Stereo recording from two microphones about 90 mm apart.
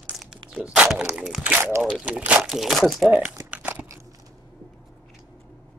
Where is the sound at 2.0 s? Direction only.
15° right (ahead or behind).